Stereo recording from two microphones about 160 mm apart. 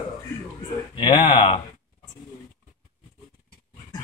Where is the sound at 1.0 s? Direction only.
35° left (ahead or behind).